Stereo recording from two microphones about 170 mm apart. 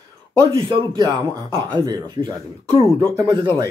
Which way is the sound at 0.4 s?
25° right (ahead or behind).